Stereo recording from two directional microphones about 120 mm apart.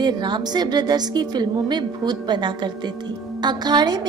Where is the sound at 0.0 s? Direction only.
40° right (ahead or behind).